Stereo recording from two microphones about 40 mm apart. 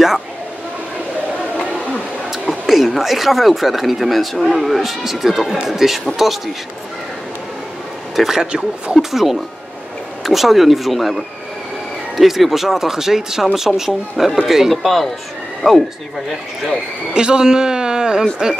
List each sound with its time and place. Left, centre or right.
2.5 s speech: centre
8.2 s speech: centre
8.5 s speech: right
9.1 s speech: centre
17.1 s speech: right